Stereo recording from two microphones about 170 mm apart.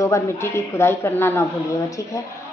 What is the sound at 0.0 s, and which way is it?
A woman's voice, 15° left (ahead or behind).